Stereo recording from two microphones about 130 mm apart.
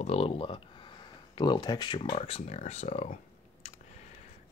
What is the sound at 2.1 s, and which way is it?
Speech, 55° left (ahead or behind).